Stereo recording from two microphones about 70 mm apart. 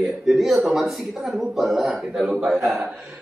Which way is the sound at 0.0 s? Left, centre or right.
Centre.